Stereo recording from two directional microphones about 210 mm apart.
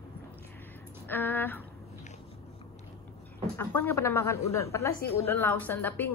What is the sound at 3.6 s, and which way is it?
A woman's voice, 10° left (ahead or behind).